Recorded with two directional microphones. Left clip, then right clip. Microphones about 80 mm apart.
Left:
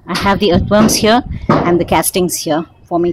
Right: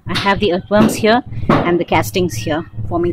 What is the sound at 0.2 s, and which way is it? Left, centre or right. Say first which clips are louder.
Speech: left 2 dB; left.